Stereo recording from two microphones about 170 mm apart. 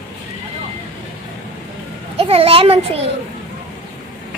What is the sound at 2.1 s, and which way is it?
Speech, 35° right (ahead or behind).